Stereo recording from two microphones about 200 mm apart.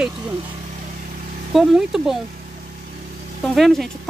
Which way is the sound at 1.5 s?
Centre (ahead or behind).